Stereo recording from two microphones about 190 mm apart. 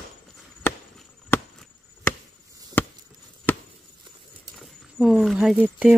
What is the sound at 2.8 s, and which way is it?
Chop, 10° left (ahead or behind).